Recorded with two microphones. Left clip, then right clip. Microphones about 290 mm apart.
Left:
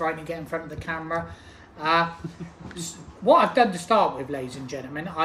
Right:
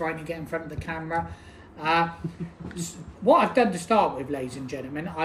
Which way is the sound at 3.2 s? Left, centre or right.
Centre.